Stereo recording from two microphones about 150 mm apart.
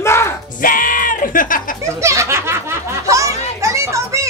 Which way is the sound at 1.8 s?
20° right (ahead or behind).